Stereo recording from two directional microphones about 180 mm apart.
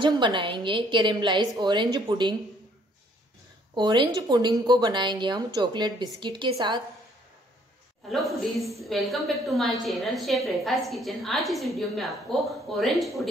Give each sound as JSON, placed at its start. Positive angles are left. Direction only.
{"t": 0.0, "sound": "a woman's voice", "side_deg": -25}
{"t": 3.7, "sound": "a woman's voice", "side_deg": -25}
{"t": 8.1, "sound": "a woman's voice", "side_deg": 0}